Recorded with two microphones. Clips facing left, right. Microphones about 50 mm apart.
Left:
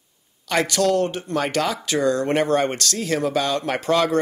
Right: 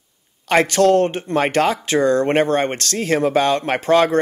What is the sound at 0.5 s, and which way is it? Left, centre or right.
Speech, right.